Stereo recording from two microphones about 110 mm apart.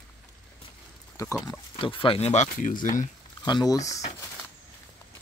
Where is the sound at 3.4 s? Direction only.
35° left (ahead or behind).